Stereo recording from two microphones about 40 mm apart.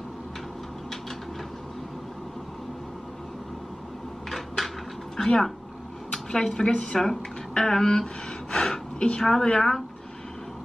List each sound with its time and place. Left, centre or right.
5.1 s speech: centre
7.0 s a woman's voice: centre